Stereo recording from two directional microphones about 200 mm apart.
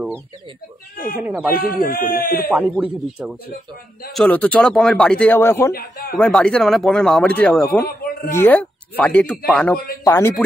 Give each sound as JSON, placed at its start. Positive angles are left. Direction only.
{"t": 1.2, "sound": "speech", "side_deg": -10}
{"t": 1.5, "sound": "a man's voice", "side_deg": 45}
{"t": 2.5, "sound": "a man's voice", "side_deg": 0}
{"t": 5.8, "sound": "a man's voice", "side_deg": 50}
{"t": 6.1, "sound": "a man's voice", "side_deg": 5}